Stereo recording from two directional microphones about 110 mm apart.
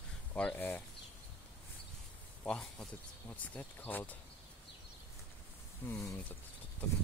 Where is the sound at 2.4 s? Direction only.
5° left (ahead or behind).